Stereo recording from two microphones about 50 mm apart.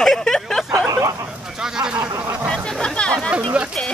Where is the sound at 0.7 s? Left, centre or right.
Right.